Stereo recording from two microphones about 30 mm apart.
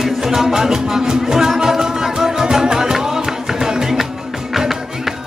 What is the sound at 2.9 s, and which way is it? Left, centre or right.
Music, centre.